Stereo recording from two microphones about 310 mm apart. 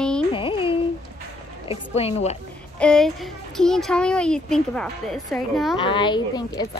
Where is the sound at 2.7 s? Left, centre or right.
Centre.